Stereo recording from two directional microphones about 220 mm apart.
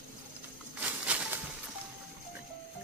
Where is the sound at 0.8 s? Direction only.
5° right (ahead or behind).